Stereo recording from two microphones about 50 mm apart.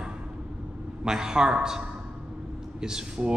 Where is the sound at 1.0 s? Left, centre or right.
Centre.